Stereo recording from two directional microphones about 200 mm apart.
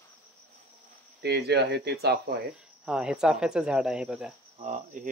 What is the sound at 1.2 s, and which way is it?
Speech, 55° right (ahead or behind).